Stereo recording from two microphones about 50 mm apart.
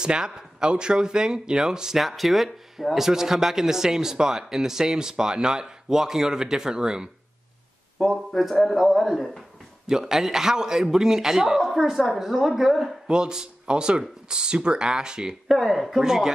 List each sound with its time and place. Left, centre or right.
0.0 s speech: centre
8.0 s speech: centre
13.1 s speech: centre